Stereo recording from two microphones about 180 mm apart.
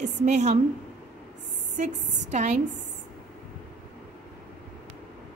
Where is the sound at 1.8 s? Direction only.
40° right (ahead or behind).